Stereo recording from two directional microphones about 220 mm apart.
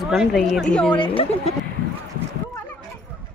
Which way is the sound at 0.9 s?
25° left (ahead or behind).